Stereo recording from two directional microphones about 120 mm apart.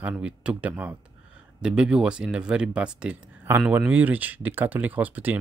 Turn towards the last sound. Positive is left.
turn(degrees=-15)  # may be behind; listen again after turning